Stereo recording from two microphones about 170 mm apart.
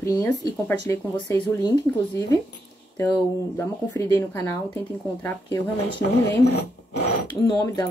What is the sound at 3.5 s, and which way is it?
Speech, 15° left (ahead or behind).